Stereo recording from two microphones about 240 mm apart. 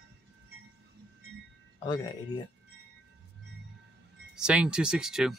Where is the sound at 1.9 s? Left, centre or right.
Centre.